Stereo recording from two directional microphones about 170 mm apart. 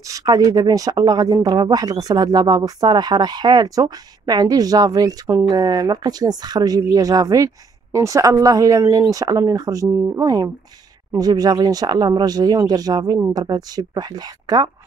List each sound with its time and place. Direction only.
0.1 s speech: 20° right (ahead or behind)